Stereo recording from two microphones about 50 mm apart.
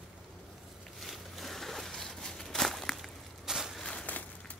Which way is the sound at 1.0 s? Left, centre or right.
Centre.